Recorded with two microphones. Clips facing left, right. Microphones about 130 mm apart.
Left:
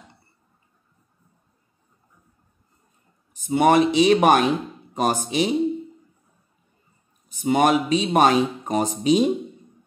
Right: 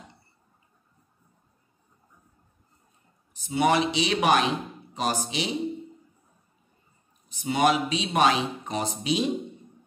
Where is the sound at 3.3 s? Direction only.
50° left (ahead or behind).